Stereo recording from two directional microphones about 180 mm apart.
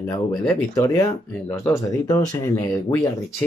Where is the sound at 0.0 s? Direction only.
15° left (ahead or behind).